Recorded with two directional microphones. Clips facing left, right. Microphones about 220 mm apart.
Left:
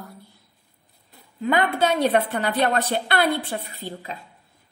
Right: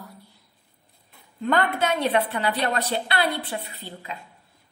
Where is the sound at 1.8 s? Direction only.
45° left (ahead or behind).